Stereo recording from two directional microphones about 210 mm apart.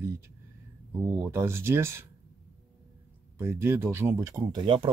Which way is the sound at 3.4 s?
10° right (ahead or behind).